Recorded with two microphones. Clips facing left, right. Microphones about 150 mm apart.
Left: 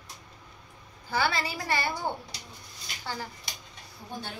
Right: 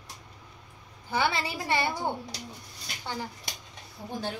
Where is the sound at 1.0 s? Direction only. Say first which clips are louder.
Even; 20° right (ahead or behind).